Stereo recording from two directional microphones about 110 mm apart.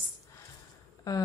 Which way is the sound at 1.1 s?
35° left (ahead or behind).